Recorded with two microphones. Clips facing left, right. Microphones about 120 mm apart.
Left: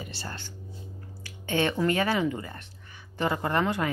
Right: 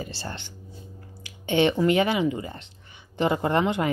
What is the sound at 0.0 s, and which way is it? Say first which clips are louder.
Speech: right 4 dB; 30° right (ahead or behind).